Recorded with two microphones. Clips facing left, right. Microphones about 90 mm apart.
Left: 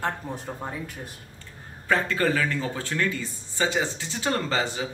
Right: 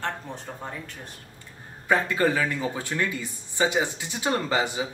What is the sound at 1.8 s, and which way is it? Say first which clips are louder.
Speech: right 1 dB; 15° right (ahead or behind).